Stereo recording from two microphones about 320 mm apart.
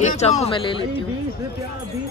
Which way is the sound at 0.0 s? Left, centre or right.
Centre.